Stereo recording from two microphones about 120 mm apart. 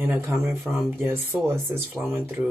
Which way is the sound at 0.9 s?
20° right (ahead or behind).